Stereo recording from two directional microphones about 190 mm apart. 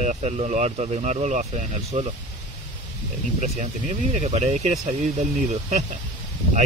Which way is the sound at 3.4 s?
40° right (ahead or behind).